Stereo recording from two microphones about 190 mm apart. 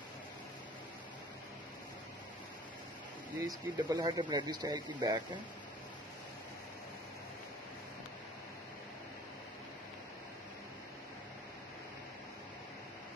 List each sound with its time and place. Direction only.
3.3 s speech: 15° right (ahead or behind)